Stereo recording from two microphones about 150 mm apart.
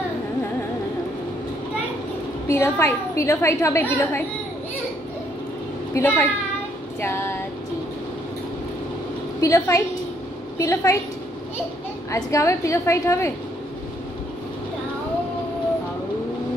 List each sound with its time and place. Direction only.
2.4 s a woman's voice: 15° left (ahead or behind)
5.9 s a woman's voice: 15° left (ahead or behind)
7.0 s female singing: 15° left (ahead or behind)
9.4 s a woman's voice: 20° left (ahead or behind)
12.1 s a woman's voice: 20° left (ahead or behind)